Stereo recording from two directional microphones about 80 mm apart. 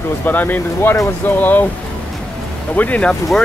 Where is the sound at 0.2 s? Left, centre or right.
Left.